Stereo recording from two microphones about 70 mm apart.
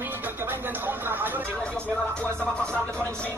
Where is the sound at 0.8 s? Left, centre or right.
Right.